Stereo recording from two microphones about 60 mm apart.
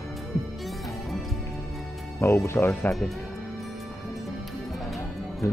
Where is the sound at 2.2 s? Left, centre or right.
Left.